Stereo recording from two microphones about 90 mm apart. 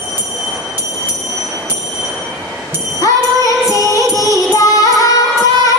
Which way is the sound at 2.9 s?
40° left (ahead or behind).